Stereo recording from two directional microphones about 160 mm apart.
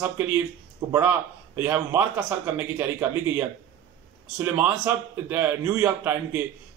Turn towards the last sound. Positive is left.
turn(degrees=-15)  # may be behind; listen again after turning